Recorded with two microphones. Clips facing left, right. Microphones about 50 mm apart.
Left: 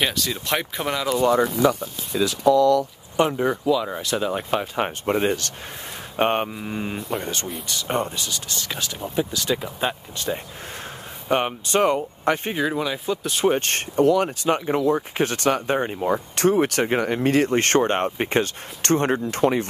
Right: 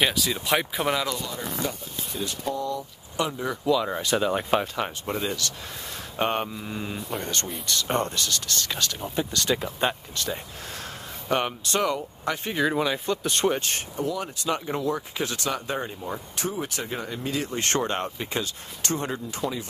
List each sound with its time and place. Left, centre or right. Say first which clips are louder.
0.0 s speech: even; centre
1.3 s speech: left 12 dB; left
3.2 s speech: left 7 dB; left
3.6 s speech: left 2 dB; centre
4.7 s speech: left 6 dB; left
6.1 s speech: left 5 dB; left
7.0 s speech: left 3 dB; centre
10.1 s speech: left 3 dB; centre
11.8 s speech: left 7 dB; left
12.7 s speech: left 1 dB; centre
13.6 s speech: left 9 dB; left
14.4 s speech: left 6 dB; left